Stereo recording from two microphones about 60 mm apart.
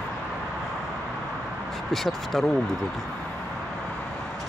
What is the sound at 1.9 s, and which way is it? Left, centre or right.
Speech, centre.